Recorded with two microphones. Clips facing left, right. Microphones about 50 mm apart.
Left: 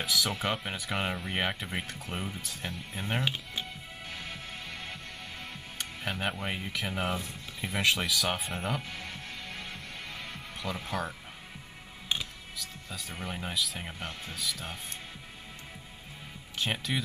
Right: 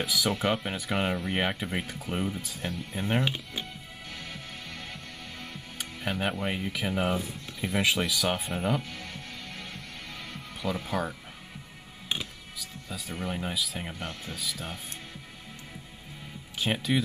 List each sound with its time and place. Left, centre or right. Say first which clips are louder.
0.0 s speech: right 3 dB; centre
4.1 s music: even; centre
5.8 s speech: right 3 dB; centre
8.9 s music: even; centre
10.6 s speech: right 4 dB; centre
16.5 s speech: right 4 dB; centre